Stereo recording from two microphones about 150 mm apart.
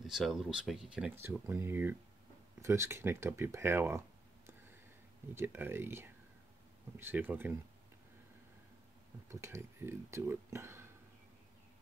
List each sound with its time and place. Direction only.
0.0 s speech: centre (ahead or behind)
5.3 s speech: 15° right (ahead or behind)
9.3 s speech: 20° right (ahead or behind)